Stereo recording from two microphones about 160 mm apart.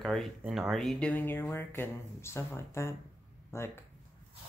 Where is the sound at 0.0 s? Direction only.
Centre (ahead or behind).